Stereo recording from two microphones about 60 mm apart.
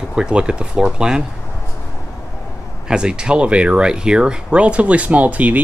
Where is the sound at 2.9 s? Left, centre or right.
Centre.